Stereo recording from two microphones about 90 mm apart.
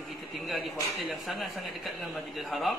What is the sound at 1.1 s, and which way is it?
Speech, centre (ahead or behind).